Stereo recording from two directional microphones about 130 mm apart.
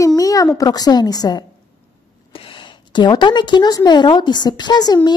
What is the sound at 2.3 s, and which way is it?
A woman's voice, 40° left (ahead or behind).